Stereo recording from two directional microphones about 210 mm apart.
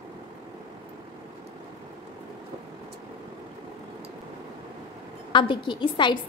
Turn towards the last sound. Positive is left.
turn(degrees=20)  # may be behind; listen again after turning